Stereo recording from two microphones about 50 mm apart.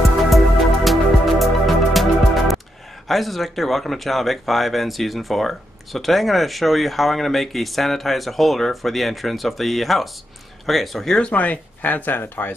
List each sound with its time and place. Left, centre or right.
0.8 s music: centre
3.1 s speech: centre
11.1 s speech: left